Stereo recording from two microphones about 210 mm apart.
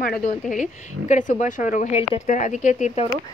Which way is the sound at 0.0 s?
40° left (ahead or behind).